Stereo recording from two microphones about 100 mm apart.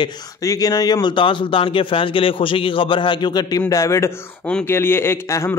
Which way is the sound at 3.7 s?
30° left (ahead or behind).